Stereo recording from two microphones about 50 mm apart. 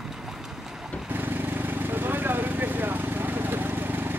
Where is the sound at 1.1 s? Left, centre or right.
Right.